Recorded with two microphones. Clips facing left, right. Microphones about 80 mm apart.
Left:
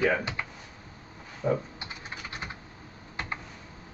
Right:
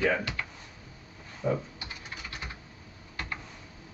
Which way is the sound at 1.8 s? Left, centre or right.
Left.